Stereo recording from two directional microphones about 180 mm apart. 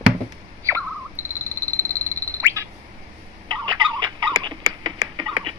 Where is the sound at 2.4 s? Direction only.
15° right (ahead or behind).